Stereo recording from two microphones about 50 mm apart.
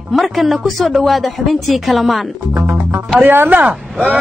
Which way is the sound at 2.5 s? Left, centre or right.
Right.